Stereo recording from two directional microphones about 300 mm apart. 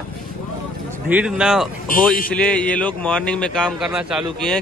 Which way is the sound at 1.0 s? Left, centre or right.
Centre.